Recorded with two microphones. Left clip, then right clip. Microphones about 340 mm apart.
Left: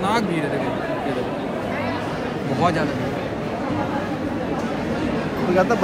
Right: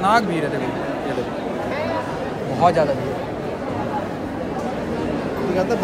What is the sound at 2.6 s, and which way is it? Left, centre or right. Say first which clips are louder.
Speech: right 5 dB; centre.